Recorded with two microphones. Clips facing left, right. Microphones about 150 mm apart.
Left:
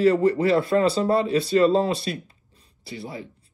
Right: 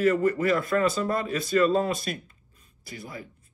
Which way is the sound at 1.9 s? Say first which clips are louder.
Left 4 dB; 45° right (ahead or behind).